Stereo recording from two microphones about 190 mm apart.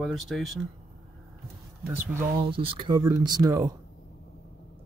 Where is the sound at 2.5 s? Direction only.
25° right (ahead or behind).